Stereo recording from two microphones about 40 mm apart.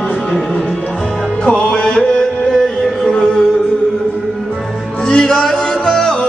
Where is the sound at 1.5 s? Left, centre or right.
Centre.